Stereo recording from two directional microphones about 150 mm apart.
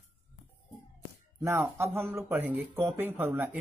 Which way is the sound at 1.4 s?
15° right (ahead or behind).